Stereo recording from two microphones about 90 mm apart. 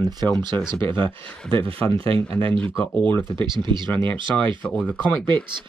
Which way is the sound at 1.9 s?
90° right.